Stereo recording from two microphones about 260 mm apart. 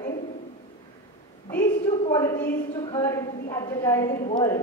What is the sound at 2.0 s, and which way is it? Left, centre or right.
A man's voice, centre.